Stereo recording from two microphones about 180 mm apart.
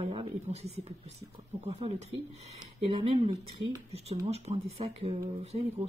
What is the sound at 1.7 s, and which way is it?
Speech, 35° right (ahead or behind).